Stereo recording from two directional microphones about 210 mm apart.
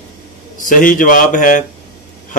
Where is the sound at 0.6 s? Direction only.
40° left (ahead or behind).